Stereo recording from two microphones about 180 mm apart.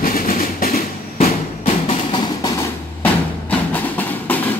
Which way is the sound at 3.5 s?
10° left (ahead or behind).